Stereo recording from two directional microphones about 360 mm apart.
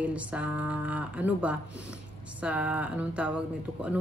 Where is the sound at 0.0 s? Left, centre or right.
Centre.